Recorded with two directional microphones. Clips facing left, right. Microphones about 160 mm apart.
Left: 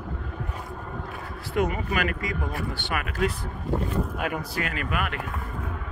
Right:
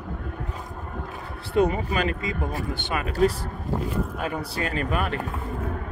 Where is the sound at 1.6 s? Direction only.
30° right (ahead or behind).